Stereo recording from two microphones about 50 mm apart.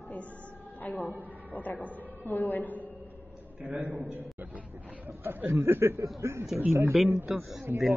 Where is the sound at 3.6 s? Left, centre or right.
Right.